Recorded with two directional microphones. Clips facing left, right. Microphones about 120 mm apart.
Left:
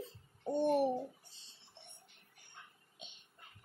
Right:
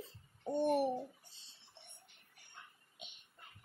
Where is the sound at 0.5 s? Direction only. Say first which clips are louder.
Left 1 dB; 10° right (ahead or behind).